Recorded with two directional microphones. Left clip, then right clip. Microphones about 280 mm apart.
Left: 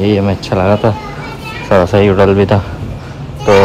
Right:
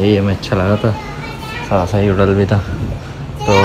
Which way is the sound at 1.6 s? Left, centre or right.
Left.